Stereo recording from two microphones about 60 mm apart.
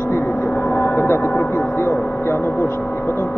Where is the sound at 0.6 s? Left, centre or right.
Left.